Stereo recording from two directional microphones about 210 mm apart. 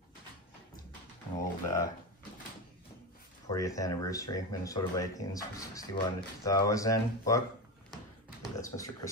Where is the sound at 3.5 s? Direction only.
15° left (ahead or behind).